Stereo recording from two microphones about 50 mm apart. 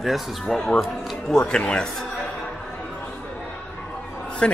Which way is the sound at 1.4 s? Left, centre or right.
Left.